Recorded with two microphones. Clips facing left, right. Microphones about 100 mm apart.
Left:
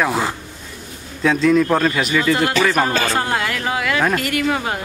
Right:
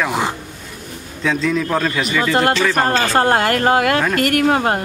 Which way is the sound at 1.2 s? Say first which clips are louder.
Left 4 dB; centre (ahead or behind).